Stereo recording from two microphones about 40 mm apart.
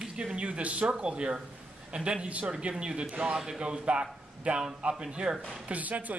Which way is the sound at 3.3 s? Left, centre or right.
Centre.